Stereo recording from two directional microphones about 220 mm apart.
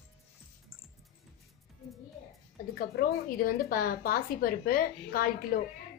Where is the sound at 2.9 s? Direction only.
40° left (ahead or behind).